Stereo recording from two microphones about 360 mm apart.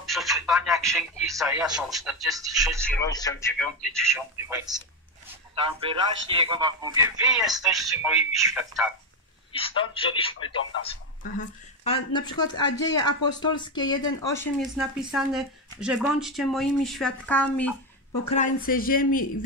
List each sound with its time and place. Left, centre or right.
0.0 s speech: centre
2.8 s speech: centre
4.1 s a man's voice: centre
5.3 s a sound: centre
5.8 s speech: centre
9.5 s speech: centre
18.3 s speech: left